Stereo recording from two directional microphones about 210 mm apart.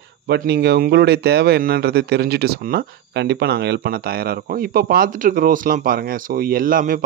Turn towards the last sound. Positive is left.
turn(degrees=-40)  # may be behind; listen again after turning